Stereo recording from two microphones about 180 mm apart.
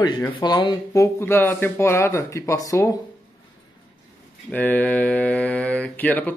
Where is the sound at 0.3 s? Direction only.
25° left (ahead or behind).